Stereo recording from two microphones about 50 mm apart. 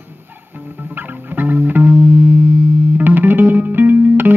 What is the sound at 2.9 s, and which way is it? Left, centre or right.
Music, right.